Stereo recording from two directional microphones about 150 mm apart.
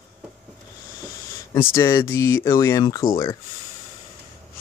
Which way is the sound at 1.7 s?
15° left (ahead or behind).